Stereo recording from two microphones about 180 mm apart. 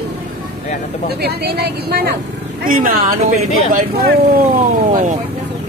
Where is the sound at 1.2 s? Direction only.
65° right (ahead or behind).